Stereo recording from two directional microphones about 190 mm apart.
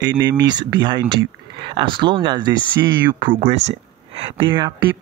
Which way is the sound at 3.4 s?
35° right (ahead or behind).